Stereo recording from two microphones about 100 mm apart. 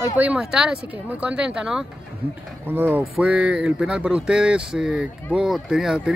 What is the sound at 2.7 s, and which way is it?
Speech, 20° right (ahead or behind).